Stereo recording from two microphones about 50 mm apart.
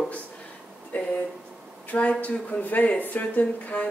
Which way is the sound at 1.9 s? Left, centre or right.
Left.